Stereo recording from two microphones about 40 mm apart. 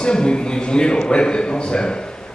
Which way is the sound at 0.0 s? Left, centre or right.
Left.